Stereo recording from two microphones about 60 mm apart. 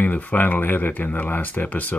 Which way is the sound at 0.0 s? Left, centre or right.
Left.